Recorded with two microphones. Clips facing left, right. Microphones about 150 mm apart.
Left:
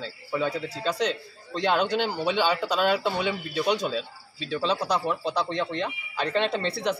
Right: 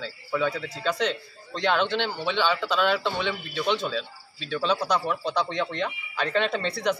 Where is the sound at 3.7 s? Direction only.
40° left (ahead or behind).